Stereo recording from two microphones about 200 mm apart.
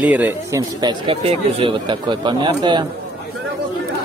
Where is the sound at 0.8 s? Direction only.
25° right (ahead or behind).